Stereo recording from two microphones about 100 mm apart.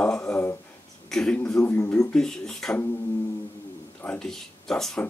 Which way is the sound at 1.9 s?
5° left (ahead or behind).